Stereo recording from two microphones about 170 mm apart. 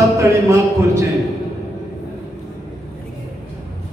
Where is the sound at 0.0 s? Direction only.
20° right (ahead or behind).